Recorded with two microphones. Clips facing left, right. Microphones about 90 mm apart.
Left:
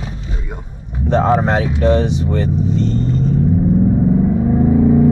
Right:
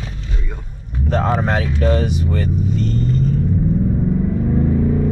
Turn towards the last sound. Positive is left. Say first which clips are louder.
# left 6 dB
turn(degrees=15)  # may be behind; listen again after turning